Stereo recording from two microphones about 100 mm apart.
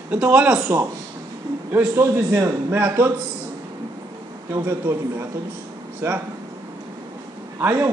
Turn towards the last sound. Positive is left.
turn(degrees=-25)  # may be behind; listen again after turning